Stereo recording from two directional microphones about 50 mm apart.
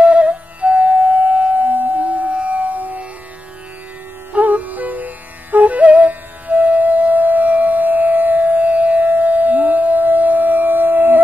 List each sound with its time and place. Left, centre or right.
0.0 s flute: right
2.2 s music: right
4.3 s music: right